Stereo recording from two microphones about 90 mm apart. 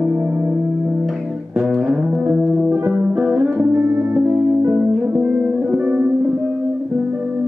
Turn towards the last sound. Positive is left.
turn(degrees=-15)  # may be behind; listen again after turning